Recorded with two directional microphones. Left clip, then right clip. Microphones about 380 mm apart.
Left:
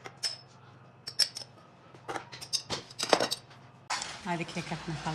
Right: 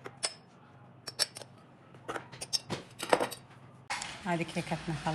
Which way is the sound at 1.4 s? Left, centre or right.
Centre.